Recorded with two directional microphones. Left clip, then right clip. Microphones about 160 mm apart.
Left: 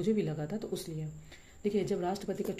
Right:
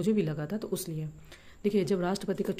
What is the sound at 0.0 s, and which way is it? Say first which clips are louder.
Speech: right 2 dB; 40° right (ahead or behind).